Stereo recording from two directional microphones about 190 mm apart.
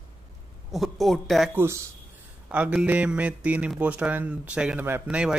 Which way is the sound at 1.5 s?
10° right (ahead or behind).